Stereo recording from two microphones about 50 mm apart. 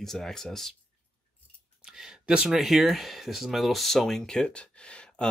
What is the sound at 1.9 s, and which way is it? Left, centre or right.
Speech, centre.